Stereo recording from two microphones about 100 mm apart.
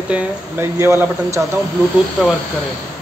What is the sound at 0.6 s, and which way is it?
A man's voice, 25° right (ahead or behind).